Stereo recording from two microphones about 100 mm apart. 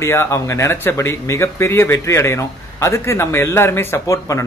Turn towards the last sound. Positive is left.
turn(degrees=30)  # may be behind; listen again after turning